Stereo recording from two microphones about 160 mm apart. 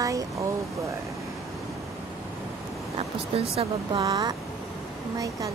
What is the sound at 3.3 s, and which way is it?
Speech, 35° right (ahead or behind).